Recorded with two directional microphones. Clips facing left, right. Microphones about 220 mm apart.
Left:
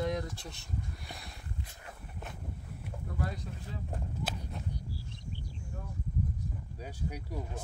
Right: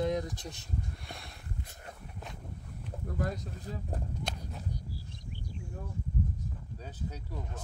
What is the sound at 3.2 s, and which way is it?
Speech, 40° right (ahead or behind).